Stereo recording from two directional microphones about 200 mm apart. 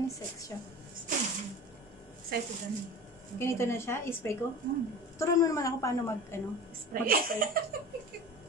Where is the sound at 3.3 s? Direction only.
15° left (ahead or behind).